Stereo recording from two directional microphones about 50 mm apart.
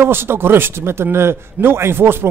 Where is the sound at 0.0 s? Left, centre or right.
Right.